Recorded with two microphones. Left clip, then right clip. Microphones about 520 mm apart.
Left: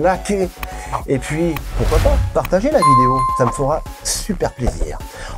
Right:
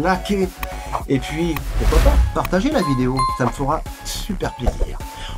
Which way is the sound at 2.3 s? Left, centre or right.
Left.